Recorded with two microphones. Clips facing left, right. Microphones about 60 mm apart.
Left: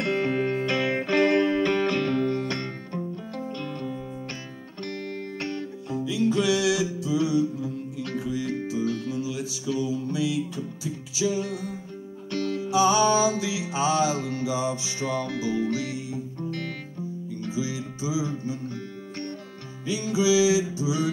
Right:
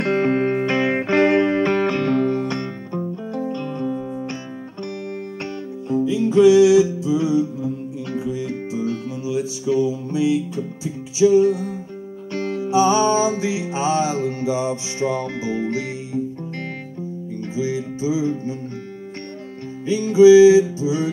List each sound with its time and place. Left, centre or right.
0.0 s music: right
5.4 s music: right
17.6 s music: right
19.9 s music: right